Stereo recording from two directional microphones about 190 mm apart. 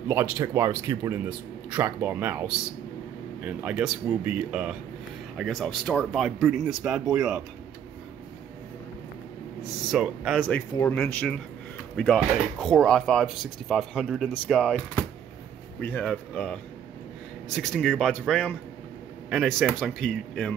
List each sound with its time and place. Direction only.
0.1 s speech: 15° right (ahead or behind)
9.8 s speech: centre (ahead or behind)
10.5 s speech: 10° left (ahead or behind)
15.8 s speech: 10° left (ahead or behind)
17.6 s speech: centre (ahead or behind)